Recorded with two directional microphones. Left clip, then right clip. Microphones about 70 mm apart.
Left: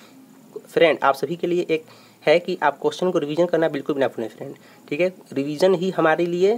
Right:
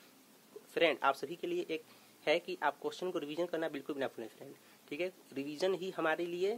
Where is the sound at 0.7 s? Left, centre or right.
Left.